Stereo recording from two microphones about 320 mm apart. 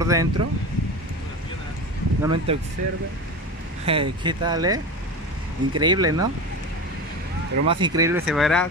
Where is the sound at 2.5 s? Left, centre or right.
Centre.